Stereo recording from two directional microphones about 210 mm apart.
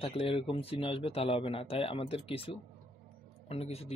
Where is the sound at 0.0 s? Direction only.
25° left (ahead or behind).